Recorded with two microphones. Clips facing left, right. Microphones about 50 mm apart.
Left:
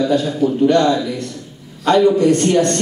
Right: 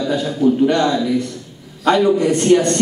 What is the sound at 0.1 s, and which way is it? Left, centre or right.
A man's voice, centre.